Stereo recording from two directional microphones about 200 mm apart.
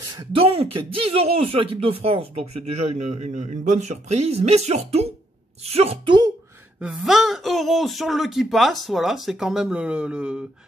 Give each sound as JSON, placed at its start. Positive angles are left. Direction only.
{"t": 0.2, "sound": "speech", "side_deg": -30}
{"t": 6.8, "sound": "speech", "side_deg": -5}